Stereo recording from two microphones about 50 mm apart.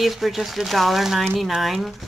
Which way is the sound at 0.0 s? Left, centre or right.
Centre.